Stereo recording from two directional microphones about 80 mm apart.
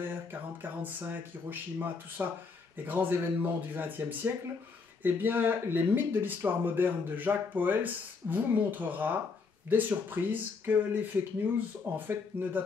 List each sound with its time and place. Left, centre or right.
0.0 s speech: right
12.1 s speech: right